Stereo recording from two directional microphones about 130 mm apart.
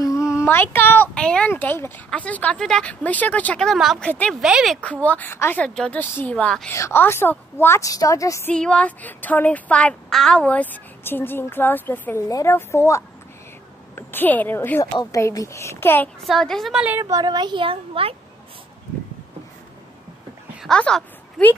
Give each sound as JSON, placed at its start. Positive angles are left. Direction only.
{"t": 0.0, "sound": "speech", "side_deg": 25}
{"t": 4.1, "sound": "speech", "side_deg": 10}
{"t": 4.4, "sound": "a woman's voice", "side_deg": -5}
{"t": 5.0, "sound": "speech", "side_deg": 15}
{"t": 6.7, "sound": "a woman's voice", "side_deg": 20}
{"t": 8.5, "sound": "a woman's voice", "side_deg": 10}
{"t": 16.3, "sound": "a woman's voice", "side_deg": 5}
{"t": 17.0, "sound": "speech", "side_deg": -30}
{"t": 20.6, "sound": "a woman's voice", "side_deg": 5}